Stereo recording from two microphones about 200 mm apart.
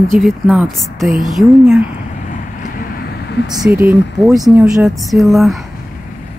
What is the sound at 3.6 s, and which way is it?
A woman's voice, 10° right (ahead or behind).